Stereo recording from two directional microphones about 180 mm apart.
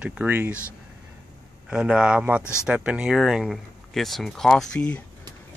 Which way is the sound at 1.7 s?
5° right (ahead or behind).